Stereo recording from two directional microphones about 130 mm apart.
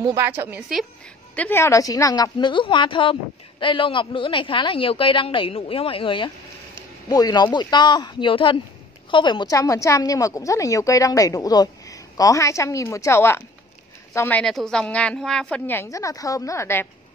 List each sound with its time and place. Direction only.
0.2 s a woman's voice: 15° right (ahead or behind)
1.3 s a woman's voice: 15° left (ahead or behind)
14.4 s a woman's voice: 5° left (ahead or behind); by 16.8 s 20° left (ahead or behind)